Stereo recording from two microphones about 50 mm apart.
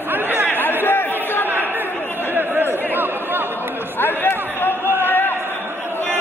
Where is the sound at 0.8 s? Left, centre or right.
Left.